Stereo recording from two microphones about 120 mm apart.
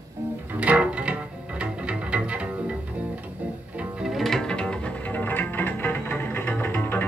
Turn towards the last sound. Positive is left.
turn(degrees=15)  # may be behind; listen again after turning